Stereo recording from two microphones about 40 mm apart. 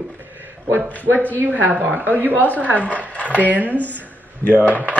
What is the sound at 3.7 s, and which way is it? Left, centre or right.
Speech, left.